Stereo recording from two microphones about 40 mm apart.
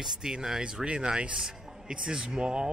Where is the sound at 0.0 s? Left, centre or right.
Centre.